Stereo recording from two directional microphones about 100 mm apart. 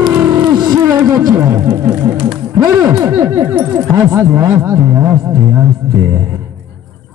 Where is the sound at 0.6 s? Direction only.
40° right (ahead or behind).